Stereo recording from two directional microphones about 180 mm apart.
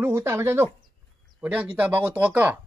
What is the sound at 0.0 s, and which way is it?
Speech, 15° right (ahead or behind).